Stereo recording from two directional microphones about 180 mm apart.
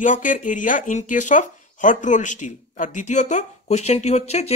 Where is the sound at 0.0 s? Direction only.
45° left (ahead or behind).